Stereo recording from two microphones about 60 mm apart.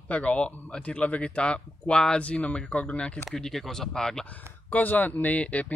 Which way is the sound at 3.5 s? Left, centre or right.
Centre.